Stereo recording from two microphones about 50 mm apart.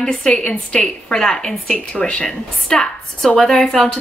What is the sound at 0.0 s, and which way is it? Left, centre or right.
A woman's voice, centre.